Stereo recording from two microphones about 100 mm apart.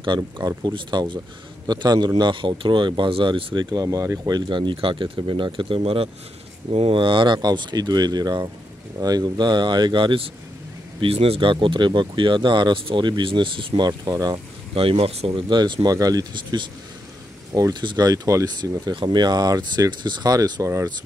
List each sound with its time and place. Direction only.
0.0 s speech: 45° right (ahead or behind); by 3.5 s 65° right (ahead or behind)
3.5 s speech: 40° right (ahead or behind)
4.4 s speech: 50° right (ahead or behind)
6.7 s speech: 80° right
7.0 s speech: 55° right (ahead or behind)
11.0 s speech: 75° right (ahead or behind); by 13.8 s 60° right (ahead or behind)
13.8 s speech: 40° right (ahead or behind)
14.7 s speech: 70° right (ahead or behind)
15.4 s speech: 50° right (ahead or behind)
17.6 s speech: 40° right (ahead or behind)
20.6 s speech: 30° right (ahead or behind)